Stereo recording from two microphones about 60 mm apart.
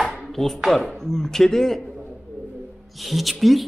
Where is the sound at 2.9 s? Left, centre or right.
Centre.